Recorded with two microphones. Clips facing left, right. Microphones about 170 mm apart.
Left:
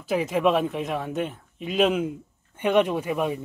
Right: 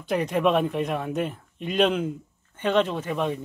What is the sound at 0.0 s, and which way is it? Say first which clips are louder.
Speech: left 1 dB; centre (ahead or behind).